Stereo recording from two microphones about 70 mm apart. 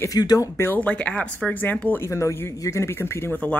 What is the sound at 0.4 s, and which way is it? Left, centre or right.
Speech, left.